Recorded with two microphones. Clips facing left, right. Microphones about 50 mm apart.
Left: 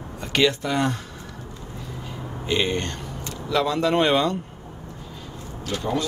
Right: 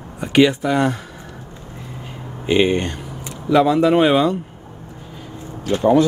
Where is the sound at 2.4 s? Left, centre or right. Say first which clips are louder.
Right 7 dB; right.